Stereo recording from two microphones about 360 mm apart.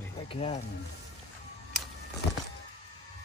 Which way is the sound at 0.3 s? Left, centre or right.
Centre.